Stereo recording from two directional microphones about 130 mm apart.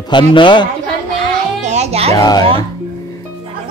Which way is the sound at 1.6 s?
60° right (ahead or behind).